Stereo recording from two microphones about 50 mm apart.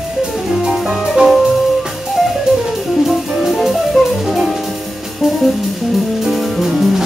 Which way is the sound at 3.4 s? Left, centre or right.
Centre.